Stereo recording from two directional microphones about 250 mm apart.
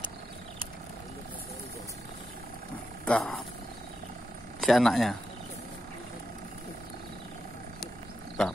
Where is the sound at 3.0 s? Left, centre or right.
Centre.